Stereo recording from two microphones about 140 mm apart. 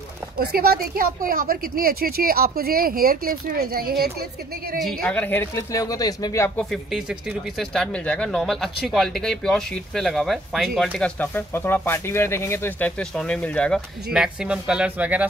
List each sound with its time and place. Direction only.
0.4 s a woman's voice: 90° right
4.7 s speech: centre (ahead or behind); by 6.6 s 20° left (ahead or behind)
6.6 s speech: centre (ahead or behind)
11.0 s speech: 15° left (ahead or behind)
13.1 s speech: 5° left (ahead or behind)
13.7 s speech: 5° right (ahead or behind)